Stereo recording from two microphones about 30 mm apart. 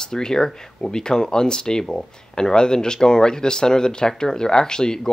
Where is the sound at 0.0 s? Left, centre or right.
Left.